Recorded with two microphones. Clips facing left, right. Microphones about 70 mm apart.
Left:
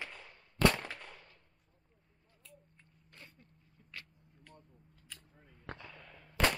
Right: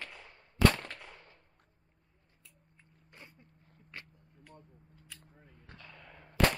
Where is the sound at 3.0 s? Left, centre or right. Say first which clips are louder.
Right 2 dB; centre.